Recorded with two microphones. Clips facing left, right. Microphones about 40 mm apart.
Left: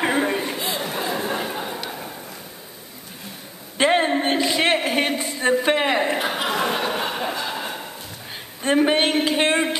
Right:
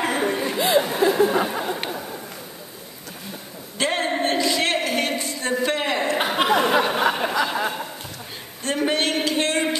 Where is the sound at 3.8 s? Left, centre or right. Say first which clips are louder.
Left 4 dB; left.